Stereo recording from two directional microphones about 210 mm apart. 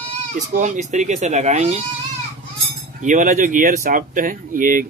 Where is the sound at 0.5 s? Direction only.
35° right (ahead or behind).